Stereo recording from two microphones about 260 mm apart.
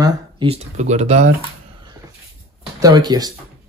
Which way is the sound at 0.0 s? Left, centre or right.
Centre.